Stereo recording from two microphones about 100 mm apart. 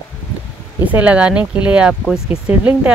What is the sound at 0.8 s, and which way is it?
Speech, 15° right (ahead or behind).